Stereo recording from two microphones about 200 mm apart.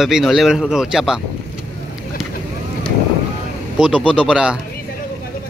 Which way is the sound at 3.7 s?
5° right (ahead or behind).